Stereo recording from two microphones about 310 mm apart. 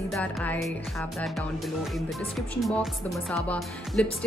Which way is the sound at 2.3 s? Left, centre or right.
Centre.